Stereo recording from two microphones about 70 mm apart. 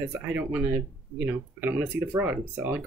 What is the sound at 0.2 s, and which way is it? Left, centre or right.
Speech, right.